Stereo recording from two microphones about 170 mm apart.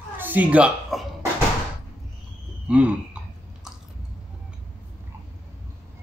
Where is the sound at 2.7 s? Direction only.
5° right (ahead or behind).